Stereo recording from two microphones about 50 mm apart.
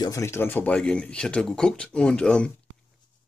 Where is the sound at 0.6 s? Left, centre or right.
Left.